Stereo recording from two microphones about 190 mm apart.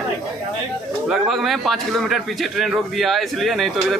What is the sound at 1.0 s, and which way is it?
A man's voice, centre (ahead or behind).